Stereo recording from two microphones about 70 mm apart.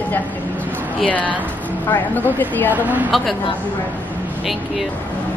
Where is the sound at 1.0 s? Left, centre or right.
Left.